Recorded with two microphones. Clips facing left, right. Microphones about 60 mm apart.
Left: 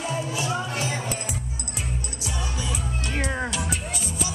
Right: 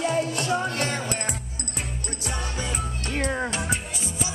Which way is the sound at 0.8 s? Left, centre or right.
Right.